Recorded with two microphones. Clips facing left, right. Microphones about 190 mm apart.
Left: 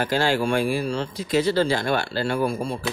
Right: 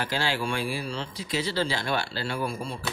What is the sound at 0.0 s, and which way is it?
Speech, 45° left (ahead or behind).